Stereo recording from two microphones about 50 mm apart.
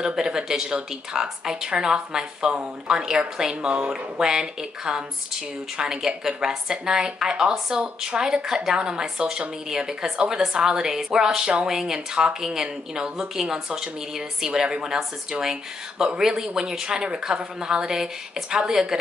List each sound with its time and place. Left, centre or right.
0.0 s a woman's voice: centre
4.2 s a woman's voice: centre